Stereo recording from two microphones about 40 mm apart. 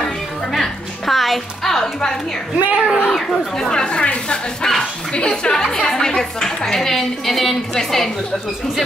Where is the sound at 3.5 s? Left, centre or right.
Centre.